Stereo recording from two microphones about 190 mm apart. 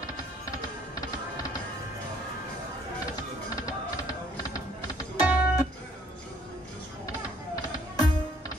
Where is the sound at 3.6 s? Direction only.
20° left (ahead or behind).